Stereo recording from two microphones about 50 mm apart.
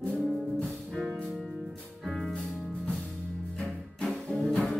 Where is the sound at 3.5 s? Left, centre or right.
Left.